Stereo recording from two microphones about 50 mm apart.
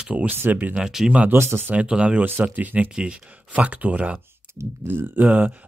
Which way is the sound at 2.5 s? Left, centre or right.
Right.